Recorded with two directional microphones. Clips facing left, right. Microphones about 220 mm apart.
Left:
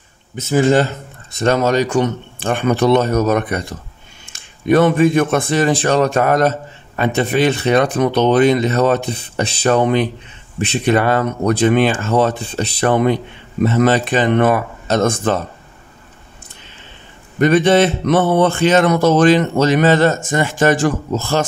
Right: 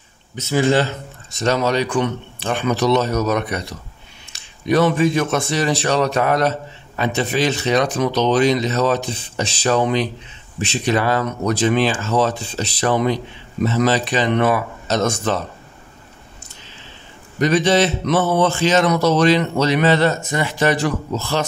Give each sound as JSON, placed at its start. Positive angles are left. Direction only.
{"t": 0.4, "sound": "speech", "side_deg": 50}
{"t": 17.4, "sound": "speech", "side_deg": 55}